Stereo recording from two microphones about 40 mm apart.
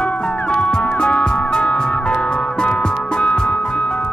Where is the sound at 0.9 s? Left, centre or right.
Left.